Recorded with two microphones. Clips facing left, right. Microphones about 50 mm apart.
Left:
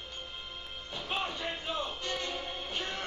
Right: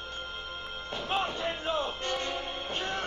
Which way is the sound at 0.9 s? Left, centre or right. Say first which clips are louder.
Right 4 dB; right.